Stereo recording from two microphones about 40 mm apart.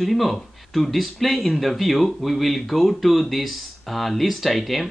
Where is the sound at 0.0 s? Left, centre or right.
Centre.